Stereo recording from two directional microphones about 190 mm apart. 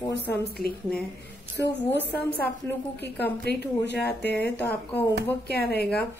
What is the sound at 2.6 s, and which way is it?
Speech, 10° left (ahead or behind).